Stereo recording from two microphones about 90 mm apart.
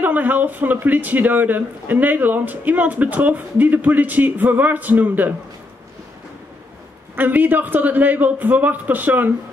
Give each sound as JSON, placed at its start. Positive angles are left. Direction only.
{"t": 0.0, "sound": "speech", "side_deg": -20}
{"t": 7.2, "sound": "speech", "side_deg": -20}